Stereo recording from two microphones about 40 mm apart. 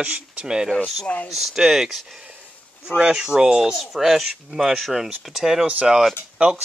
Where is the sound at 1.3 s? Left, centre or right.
Centre.